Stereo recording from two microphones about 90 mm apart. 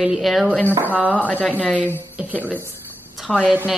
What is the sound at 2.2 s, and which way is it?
Speech, 15° right (ahead or behind).